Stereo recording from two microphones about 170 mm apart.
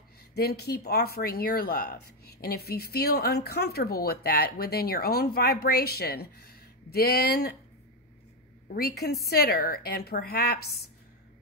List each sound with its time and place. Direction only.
0.3 s speech: 70° left (ahead or behind)
8.6 s speech: 65° left (ahead or behind)